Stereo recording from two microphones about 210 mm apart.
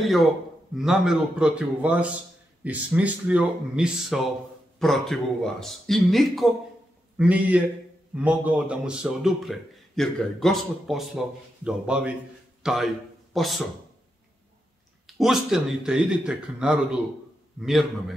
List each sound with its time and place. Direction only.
0.0 s a man's voice: centre (ahead or behind)
15.0 s a man's voice: centre (ahead or behind)